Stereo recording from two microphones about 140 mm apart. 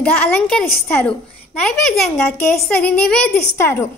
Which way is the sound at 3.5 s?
20° left (ahead or behind).